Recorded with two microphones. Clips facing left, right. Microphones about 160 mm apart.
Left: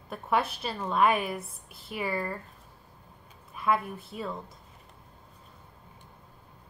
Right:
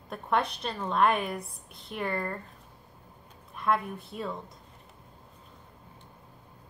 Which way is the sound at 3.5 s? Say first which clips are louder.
Even; 5° left (ahead or behind).